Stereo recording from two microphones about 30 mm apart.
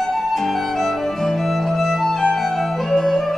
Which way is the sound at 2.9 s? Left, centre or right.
Centre.